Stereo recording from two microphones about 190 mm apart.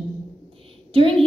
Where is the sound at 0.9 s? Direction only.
30° right (ahead or behind).